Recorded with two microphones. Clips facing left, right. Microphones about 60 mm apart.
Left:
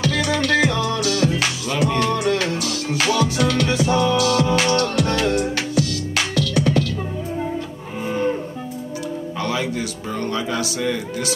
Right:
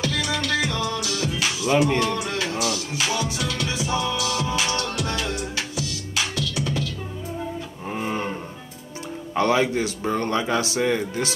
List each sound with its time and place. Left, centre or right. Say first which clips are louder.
0.0 s music: left 5 dB; left
1.7 s music: right 3 dB; centre
2.0 s music: left 5 dB; left
9.4 s speech: right 5 dB; right